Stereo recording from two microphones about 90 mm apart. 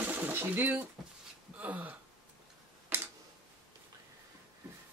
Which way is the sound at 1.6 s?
15° right (ahead or behind).